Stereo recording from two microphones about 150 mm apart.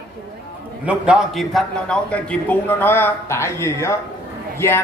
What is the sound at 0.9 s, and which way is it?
A man's voice, 5° right (ahead or behind).